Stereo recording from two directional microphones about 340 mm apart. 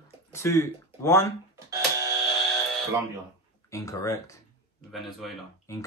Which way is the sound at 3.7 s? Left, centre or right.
Centre.